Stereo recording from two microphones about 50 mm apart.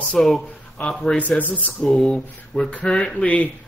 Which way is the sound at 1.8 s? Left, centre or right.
Centre.